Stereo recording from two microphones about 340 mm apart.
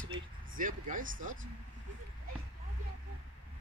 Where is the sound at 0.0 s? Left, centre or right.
Right.